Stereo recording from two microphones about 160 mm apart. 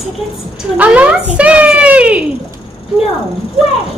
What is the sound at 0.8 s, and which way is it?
A child's voice, 10° right (ahead or behind).